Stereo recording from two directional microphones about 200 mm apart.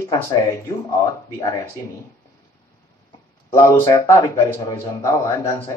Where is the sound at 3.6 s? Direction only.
15° left (ahead or behind).